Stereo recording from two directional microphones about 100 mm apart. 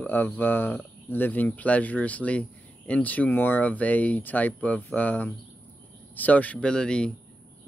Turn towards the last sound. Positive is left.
turn(degrees=10)  # may be behind; listen again after turning